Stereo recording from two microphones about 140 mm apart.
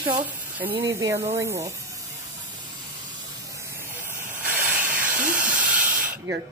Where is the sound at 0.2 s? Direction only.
10° right (ahead or behind).